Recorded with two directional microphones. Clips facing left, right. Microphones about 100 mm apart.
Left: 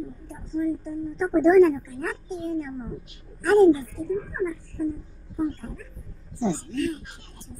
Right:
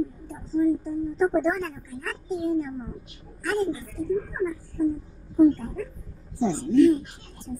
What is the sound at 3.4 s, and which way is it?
Speech, 35° left (ahead or behind).